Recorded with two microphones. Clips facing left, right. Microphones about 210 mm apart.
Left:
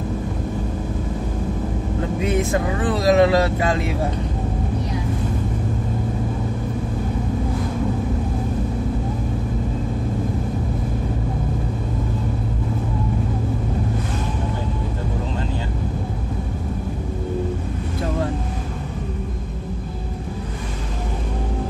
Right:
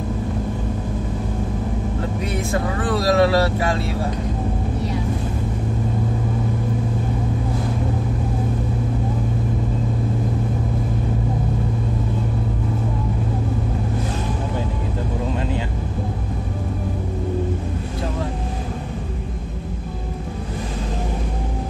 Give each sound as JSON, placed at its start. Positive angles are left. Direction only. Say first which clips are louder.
{"t": 2.5, "sound": "speech", "louder": "left 1 dB", "side_deg": 20}